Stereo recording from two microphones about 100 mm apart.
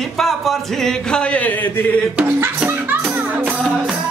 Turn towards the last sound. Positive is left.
turn(degrees=-10)  # may be behind; listen again after turning